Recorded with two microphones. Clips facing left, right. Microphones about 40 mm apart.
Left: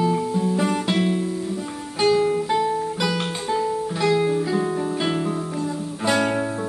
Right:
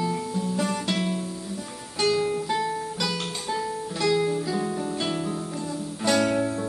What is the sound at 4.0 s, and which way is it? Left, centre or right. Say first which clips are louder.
Music: left 3 dB; left.